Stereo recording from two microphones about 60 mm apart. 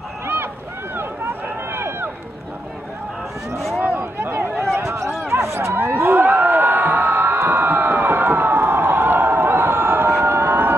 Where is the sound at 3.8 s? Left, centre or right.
Right.